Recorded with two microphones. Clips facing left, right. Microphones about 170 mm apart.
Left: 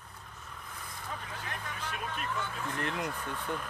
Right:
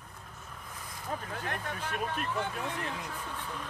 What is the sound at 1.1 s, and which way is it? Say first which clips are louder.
Speech: right 6 dB; 45° right (ahead or behind).